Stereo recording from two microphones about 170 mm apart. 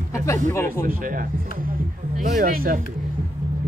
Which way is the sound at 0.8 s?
55° right (ahead or behind).